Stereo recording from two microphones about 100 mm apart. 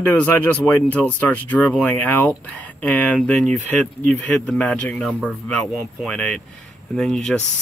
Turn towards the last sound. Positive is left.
turn(degrees=5)  # may be behind; listen again after turning